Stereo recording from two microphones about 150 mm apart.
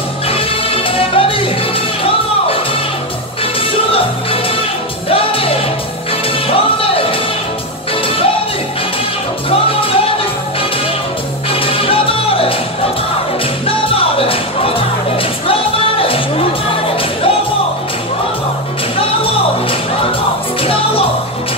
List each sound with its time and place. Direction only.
0.3 s music: 40° left (ahead or behind)
5.1 s music: 40° left (ahead or behind)
9.5 s music: 40° left (ahead or behind)
11.6 s music: 40° left (ahead or behind)